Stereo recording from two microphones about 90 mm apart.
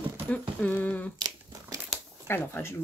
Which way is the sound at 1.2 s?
40° right (ahead or behind).